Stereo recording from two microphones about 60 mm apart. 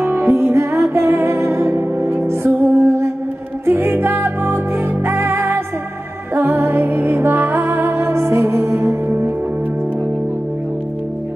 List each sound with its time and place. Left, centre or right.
0.0 s music: right